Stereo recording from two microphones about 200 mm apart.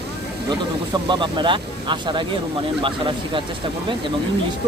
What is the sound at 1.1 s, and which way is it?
Speech, 25° right (ahead or behind).